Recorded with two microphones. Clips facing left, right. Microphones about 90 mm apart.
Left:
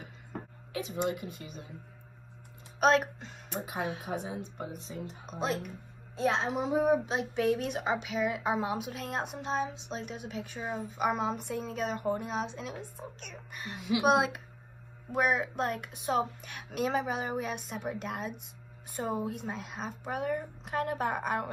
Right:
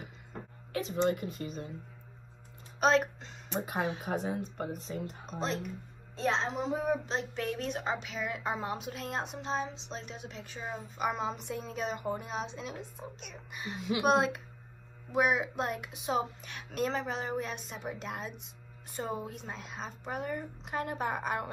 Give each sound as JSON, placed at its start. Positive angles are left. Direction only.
{"t": 0.8, "sound": "a woman's voice", "side_deg": 10}
{"t": 1.1, "sound": "speech", "side_deg": -50}
{"t": 2.8, "sound": "speech", "side_deg": 5}
{"t": 4.0, "sound": "speech", "side_deg": -50}
{"t": 5.2, "sound": "a woman's voice", "side_deg": 5}